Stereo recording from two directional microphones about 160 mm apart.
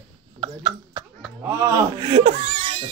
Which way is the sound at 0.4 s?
30° right (ahead or behind).